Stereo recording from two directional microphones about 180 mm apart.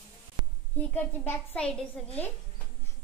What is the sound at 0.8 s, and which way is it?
A woman's voice, 10° left (ahead or behind).